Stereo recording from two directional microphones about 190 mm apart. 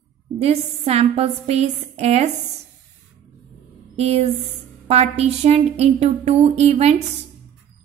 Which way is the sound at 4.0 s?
30° right (ahead or behind).